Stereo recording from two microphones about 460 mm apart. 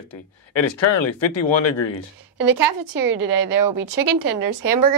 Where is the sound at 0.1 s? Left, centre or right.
Left.